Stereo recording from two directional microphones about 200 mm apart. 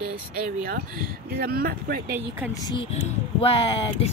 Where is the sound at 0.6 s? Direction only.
45° right (ahead or behind).